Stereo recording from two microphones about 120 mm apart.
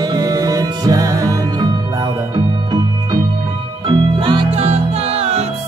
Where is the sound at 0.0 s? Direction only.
30° right (ahead or behind).